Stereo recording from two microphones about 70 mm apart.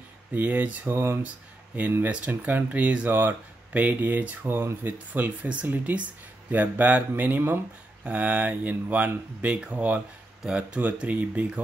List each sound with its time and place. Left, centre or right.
0.3 s speech: right
2.0 s speech: centre
8.0 s speech: right